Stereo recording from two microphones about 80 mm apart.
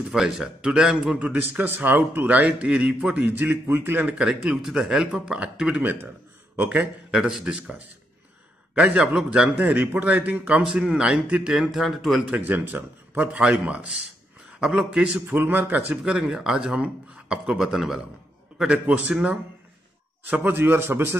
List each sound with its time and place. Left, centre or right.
0.1 s a man's voice: centre; by 4.2 s right
4.2 s a man's voice: centre
8.7 s a man's voice: centre
12.3 s a man's voice: centre
15.1 s a man's voice: right